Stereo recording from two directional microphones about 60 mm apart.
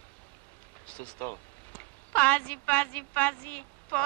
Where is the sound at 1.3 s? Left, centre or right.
Left.